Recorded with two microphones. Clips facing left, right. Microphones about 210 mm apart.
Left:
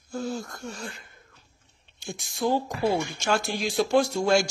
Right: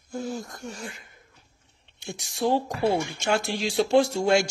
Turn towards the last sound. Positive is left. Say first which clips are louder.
# right 1 dB
turn(degrees=-20)  # may be behind; listen again after turning